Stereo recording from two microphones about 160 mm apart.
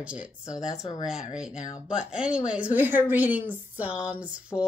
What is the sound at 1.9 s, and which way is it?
A woman's voice, 5° right (ahead or behind).